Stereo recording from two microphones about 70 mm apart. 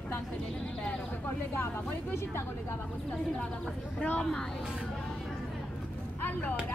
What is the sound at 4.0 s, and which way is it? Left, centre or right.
Speech, centre.